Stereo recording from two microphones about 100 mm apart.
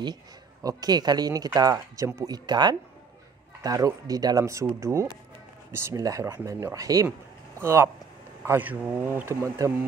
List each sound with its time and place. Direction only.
0.7 s speech: 40° right (ahead or behind)